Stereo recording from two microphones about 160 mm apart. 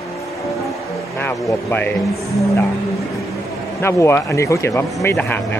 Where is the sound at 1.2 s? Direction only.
10° left (ahead or behind).